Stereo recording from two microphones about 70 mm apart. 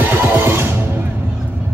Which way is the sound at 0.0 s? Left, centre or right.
Right.